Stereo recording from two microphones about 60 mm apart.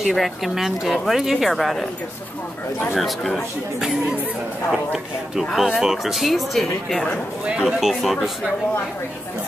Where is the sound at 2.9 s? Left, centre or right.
Centre.